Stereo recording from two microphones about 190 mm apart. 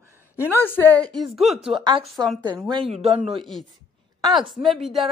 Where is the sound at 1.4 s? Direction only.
Centre (ahead or behind).